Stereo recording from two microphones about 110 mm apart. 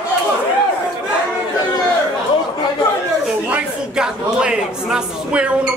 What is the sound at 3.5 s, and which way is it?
A man's voice, 5° right (ahead or behind).